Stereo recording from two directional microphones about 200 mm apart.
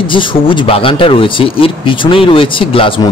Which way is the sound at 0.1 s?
25° left (ahead or behind).